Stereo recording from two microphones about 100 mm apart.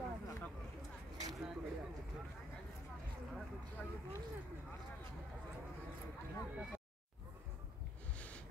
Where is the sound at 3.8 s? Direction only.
15° left (ahead or behind).